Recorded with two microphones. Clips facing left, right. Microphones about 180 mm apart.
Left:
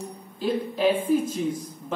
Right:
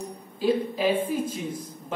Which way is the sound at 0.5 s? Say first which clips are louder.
Even; 10° right (ahead or behind).